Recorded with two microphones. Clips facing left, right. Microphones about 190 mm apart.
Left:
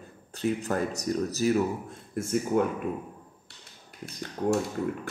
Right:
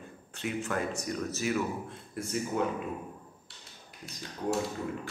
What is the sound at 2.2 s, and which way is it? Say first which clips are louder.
Speech: left 6 dB; 50° left (ahead or behind).